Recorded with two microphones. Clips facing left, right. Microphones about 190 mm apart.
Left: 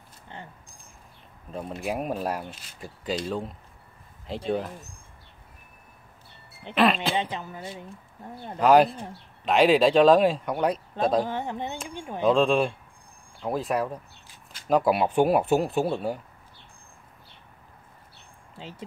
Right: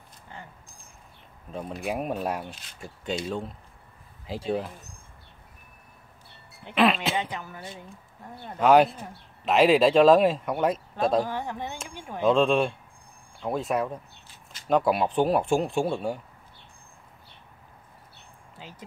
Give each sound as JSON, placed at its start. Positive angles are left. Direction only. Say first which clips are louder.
{"t": 1.5, "sound": "speech", "louder": "even", "side_deg": 0}
{"t": 6.7, "sound": "speech", "louder": "even", "side_deg": 0}
{"t": 7.2, "sound": "speech", "louder": "left 2 dB", "side_deg": 20}
{"t": 8.5, "sound": "speech", "louder": "even", "side_deg": 0}
{"t": 11.2, "sound": "speech", "louder": "left 2 dB", "side_deg": 20}
{"t": 12.3, "sound": "speech", "louder": "even", "side_deg": 0}
{"t": 18.6, "sound": "speech", "louder": "left 5 dB", "side_deg": 25}